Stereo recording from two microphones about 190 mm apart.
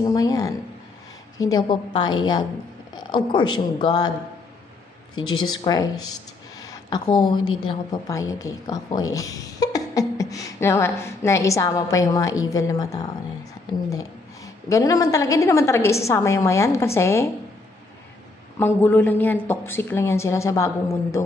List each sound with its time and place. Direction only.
0.0 s speech: 20° left (ahead or behind)
5.2 s speech: 90° left
5.6 s speech: 20° left (ahead or behind)
18.6 s speech: 10° left (ahead or behind)